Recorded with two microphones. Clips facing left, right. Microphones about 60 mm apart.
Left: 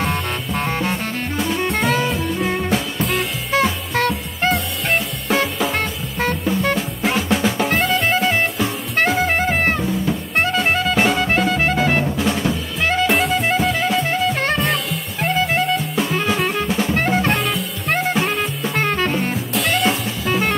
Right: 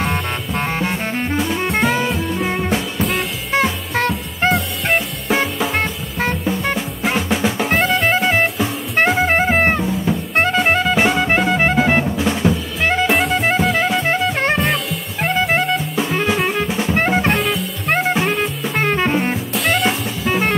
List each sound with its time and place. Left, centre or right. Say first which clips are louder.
0.0 s music: right 1 dB; centre
3.0 s music: right 1 dB; centre
8.9 s jazz: right 3 dB; centre
10.4 s music: right 3 dB; centre
12.2 s music: right 2 dB; centre
14.3 s music: right 2 dB; right
14.6 s music: right 1 dB; centre
16.9 s music: right 3 dB; centre
17.3 s music: right 2 dB; centre
19.5 s music: even; centre